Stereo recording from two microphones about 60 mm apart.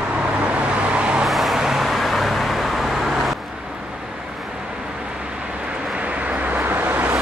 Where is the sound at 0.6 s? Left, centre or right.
Centre.